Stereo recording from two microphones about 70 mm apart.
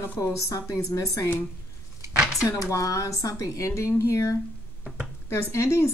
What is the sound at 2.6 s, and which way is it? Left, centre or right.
A woman's voice, left.